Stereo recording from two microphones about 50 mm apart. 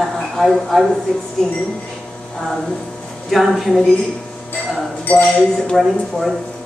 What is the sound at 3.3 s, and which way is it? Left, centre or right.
Speech, centre.